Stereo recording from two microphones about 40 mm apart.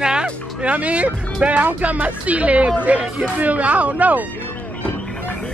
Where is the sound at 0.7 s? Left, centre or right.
Right.